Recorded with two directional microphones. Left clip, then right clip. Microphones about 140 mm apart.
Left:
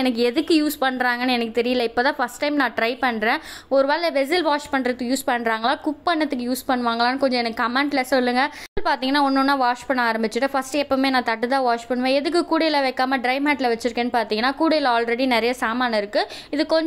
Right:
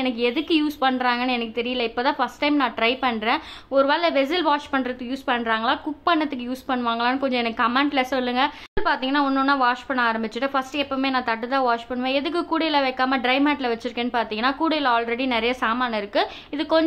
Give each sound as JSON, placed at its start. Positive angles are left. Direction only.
{"t": 0.0, "sound": "a woman's voice", "side_deg": 30}
{"t": 8.8, "sound": "a woman's voice", "side_deg": 40}
{"t": 9.2, "sound": "a woman's voice", "side_deg": 25}
{"t": 9.5, "sound": "a woman's voice", "side_deg": 35}